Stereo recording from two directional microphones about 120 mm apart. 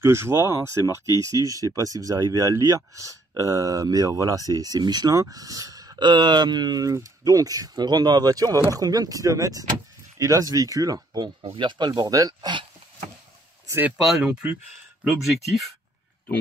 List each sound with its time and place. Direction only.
0.0 s speech: 20° right (ahead or behind)
11.4 s speech: 45° right (ahead or behind)
14.0 s speech: 5° right (ahead or behind)